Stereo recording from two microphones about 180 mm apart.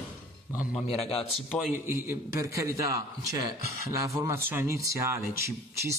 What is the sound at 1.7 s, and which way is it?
Speech, 15° right (ahead or behind).